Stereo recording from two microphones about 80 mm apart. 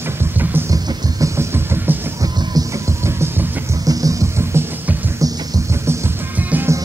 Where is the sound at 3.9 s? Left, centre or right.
Right.